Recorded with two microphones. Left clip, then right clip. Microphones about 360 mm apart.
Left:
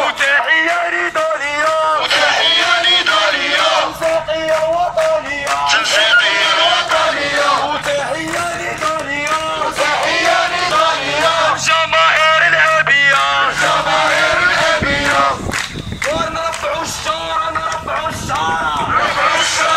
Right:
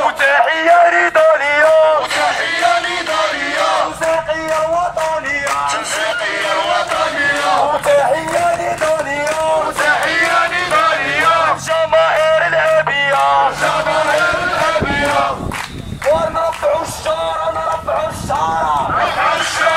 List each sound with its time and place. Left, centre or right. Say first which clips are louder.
0.2 s music: even; right
5.9 s music: left 6 dB; centre
11.7 s music: even; right